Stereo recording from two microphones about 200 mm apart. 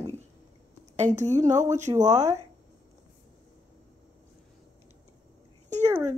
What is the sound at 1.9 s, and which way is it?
Speech, 20° right (ahead or behind).